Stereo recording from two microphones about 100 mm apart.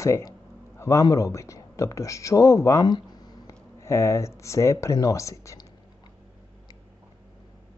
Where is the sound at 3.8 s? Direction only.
30° left (ahead or behind).